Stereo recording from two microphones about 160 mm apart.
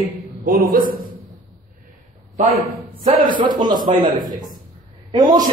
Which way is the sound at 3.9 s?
40° right (ahead or behind).